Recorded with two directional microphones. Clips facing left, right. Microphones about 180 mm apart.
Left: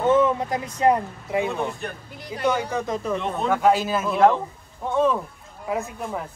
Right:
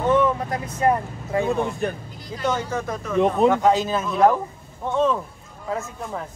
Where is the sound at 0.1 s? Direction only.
20° left (ahead or behind).